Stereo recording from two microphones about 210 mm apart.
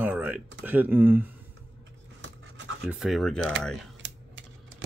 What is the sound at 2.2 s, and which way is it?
Dog, 60° right (ahead or behind).